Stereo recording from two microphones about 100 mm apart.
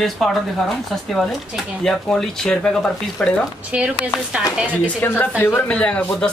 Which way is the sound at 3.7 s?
10° right (ahead or behind).